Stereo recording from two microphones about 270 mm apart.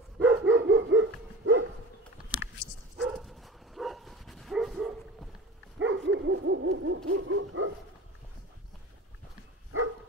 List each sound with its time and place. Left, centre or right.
0.2 s dog: centre
0.6 s dog: right
3.0 s dog: centre
5.8 s dog: right
7.1 s bow-wow: right